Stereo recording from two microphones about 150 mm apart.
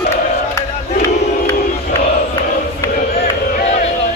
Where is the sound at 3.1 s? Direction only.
50° left (ahead or behind).